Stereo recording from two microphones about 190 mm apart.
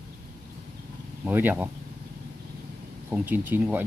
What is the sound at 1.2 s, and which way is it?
Speech, 10° right (ahead or behind).